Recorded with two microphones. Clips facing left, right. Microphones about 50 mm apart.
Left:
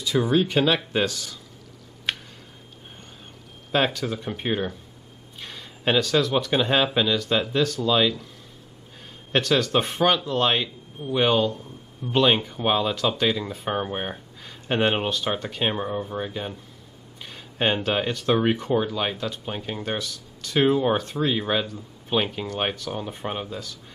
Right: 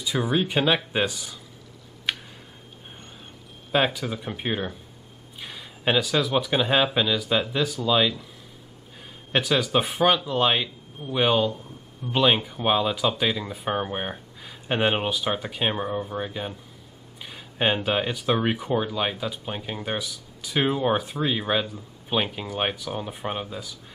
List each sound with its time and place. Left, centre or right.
0.0 s speech: centre
2.1 s a sound: centre
3.7 s speech: centre
9.3 s speech: centre